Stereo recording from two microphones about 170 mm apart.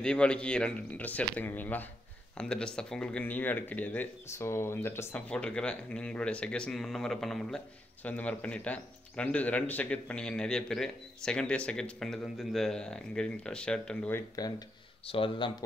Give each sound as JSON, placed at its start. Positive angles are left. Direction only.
{"t": 0.0, "sound": "speech", "side_deg": 5}
{"t": 15.0, "sound": "speech", "side_deg": 30}